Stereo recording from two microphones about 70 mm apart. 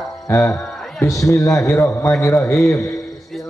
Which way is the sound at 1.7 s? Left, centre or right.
Left.